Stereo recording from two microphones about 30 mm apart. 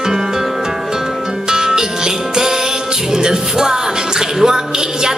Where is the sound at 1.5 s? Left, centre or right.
Right.